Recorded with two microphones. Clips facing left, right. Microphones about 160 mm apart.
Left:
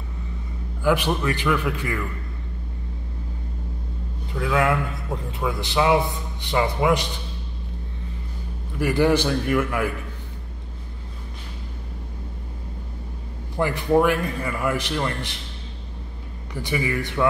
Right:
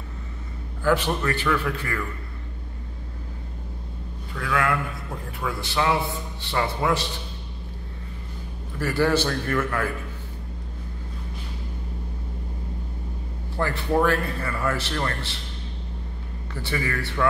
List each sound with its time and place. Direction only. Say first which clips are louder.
0.8 s a man's voice: left 1 dB; 15° left (ahead or behind)
4.3 s a man's voice: left 3 dB; 20° left (ahead or behind)
8.7 s a man's voice: left 3 dB; 15° left (ahead or behind)
13.6 s a man's voice: left 3 dB; 15° left (ahead or behind)
16.5 s a man's voice: left 3 dB; 15° left (ahead or behind)